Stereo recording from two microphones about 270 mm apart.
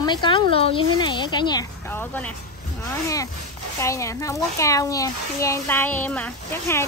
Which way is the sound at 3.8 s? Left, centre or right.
Centre.